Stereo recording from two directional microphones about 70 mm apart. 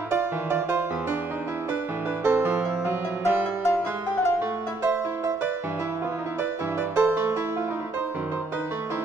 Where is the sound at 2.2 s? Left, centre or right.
Right.